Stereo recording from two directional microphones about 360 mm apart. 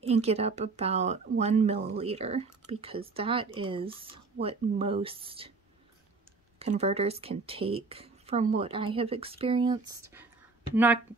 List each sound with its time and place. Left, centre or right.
0.0 s speech: centre
6.6 s speech: centre